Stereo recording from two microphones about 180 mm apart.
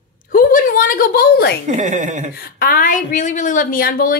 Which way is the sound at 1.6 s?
40° right (ahead or behind).